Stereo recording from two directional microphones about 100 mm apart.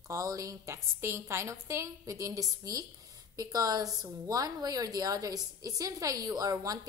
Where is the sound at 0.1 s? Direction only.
35° right (ahead or behind).